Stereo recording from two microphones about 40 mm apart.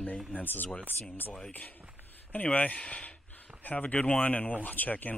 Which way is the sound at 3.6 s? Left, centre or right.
Left.